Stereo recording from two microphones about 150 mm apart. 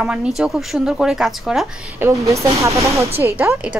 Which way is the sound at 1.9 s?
20° right (ahead or behind).